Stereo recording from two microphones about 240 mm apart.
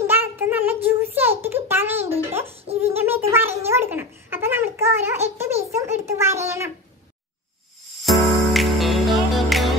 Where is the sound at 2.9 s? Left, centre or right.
Centre.